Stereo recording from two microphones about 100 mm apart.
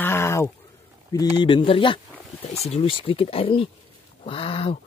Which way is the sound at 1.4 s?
55° left (ahead or behind).